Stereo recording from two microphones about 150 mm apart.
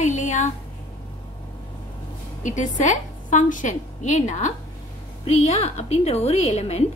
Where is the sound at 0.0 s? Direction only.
55° left (ahead or behind).